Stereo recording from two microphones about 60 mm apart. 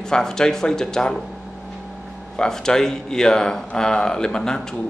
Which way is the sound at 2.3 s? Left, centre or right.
Centre.